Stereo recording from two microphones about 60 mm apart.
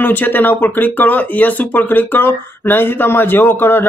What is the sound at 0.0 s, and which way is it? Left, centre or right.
Speech, left.